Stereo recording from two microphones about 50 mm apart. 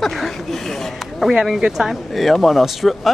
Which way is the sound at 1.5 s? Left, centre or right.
Centre.